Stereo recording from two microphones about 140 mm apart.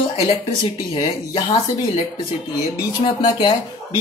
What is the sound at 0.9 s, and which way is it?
A woman's voice, 35° left (ahead or behind).